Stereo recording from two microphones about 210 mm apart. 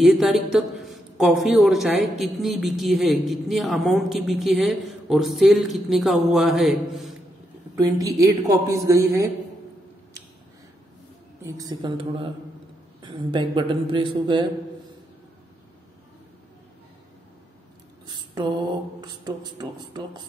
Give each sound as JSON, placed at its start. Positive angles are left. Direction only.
{"t": 0.0, "sound": "a woman's voice", "side_deg": 0}
{"t": 7.7, "sound": "a man's voice", "side_deg": -15}
{"t": 11.4, "sound": "a man's voice", "side_deg": -15}
{"t": 18.0, "sound": "a sound", "side_deg": -20}
{"t": 18.9, "sound": "speech", "side_deg": -20}